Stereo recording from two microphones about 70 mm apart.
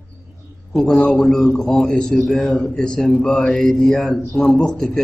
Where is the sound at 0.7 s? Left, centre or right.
Centre.